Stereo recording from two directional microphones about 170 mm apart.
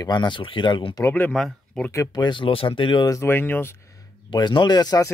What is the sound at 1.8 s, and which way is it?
Speech, 20° left (ahead or behind).